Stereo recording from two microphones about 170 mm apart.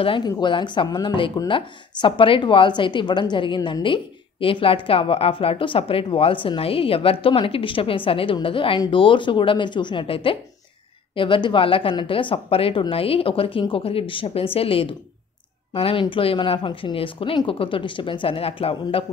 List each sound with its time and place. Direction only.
0.0 s speech: 30° left (ahead or behind)